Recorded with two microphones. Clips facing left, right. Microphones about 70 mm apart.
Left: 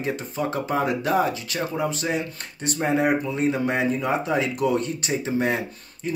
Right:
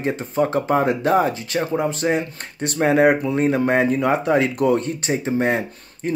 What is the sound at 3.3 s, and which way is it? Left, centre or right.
A man's voice, right.